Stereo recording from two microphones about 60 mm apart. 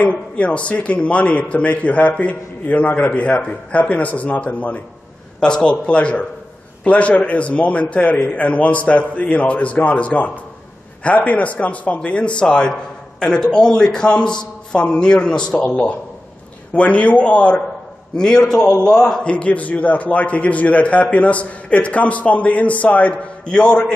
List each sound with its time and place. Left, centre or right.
0.0 s a man's voice: left